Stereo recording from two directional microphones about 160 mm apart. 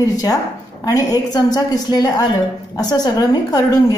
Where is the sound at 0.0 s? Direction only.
20° left (ahead or behind).